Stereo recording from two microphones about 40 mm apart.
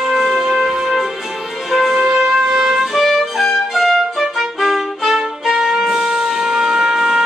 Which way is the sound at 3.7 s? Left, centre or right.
Centre.